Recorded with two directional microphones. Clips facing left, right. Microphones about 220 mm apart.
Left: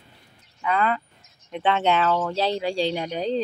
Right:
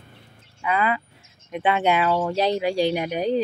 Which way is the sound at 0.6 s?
10° right (ahead or behind).